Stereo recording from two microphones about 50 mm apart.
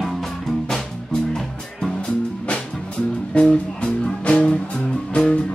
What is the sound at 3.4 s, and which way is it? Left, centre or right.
Speech, left.